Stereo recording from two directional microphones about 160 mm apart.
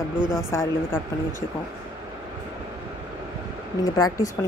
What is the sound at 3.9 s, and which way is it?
Speech, 20° left (ahead or behind).